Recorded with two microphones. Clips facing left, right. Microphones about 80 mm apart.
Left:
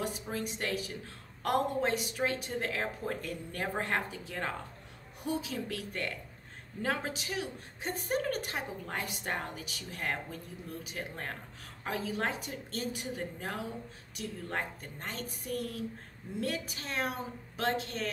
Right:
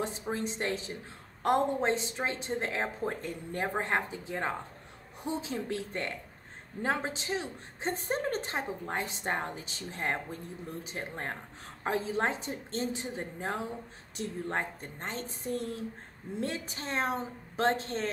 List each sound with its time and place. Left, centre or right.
0.0 s a woman's voice: right